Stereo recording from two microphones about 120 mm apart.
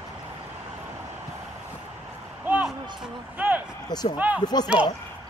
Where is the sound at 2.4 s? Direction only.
10° right (ahead or behind).